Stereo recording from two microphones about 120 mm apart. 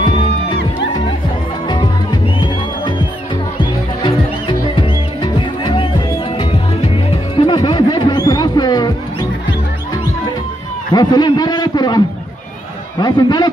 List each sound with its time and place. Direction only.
0.0 s music: 40° left (ahead or behind)
4.0 s music: 40° left (ahead or behind)
10.9 s a man's voice: 35° left (ahead or behind)
13.0 s a man's voice: 35° left (ahead or behind)